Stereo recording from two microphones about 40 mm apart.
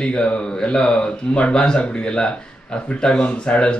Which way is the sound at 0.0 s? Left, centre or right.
Left.